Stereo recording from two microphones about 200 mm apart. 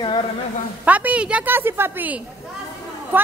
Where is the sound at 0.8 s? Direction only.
10° right (ahead or behind).